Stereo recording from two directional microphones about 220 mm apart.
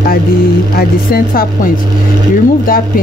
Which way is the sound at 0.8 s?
45° left (ahead or behind).